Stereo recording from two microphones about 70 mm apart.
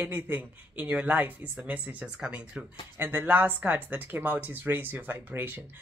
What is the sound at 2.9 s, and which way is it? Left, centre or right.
Speech, right.